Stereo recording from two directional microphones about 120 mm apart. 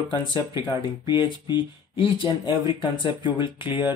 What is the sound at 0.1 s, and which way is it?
Speech, 40° left (ahead or behind).